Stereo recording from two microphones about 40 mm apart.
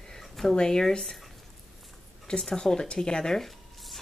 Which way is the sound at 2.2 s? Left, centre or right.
Centre.